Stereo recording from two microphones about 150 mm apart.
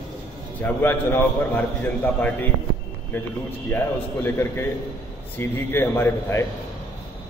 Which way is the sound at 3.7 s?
15° left (ahead or behind).